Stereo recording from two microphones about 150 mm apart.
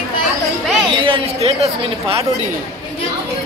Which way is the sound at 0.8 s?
35° right (ahead or behind).